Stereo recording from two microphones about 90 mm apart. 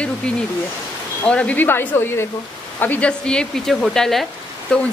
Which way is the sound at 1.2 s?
10° left (ahead or behind).